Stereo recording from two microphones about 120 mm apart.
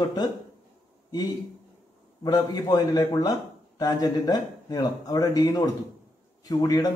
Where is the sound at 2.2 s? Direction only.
30° left (ahead or behind).